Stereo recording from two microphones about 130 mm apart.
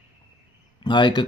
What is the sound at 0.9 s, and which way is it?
Speech, 35° left (ahead or behind).